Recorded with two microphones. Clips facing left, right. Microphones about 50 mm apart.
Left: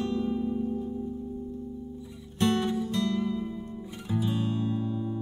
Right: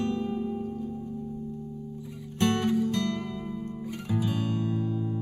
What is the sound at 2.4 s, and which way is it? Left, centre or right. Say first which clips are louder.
Music: right 1 dB; right.